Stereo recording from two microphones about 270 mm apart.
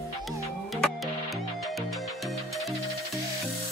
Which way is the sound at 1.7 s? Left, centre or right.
Centre.